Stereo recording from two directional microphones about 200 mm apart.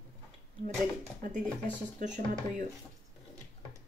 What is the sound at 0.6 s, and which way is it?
Speech, 40° right (ahead or behind).